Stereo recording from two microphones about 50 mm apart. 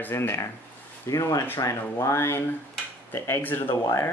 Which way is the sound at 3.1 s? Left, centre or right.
Left.